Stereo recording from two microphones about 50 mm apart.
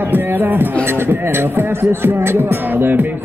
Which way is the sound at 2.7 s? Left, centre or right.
Right.